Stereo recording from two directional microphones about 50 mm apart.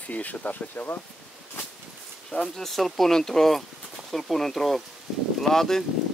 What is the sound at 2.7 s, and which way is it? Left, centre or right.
Speech, centre.